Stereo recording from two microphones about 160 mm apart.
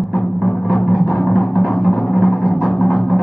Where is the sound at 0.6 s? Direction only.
Centre (ahead or behind).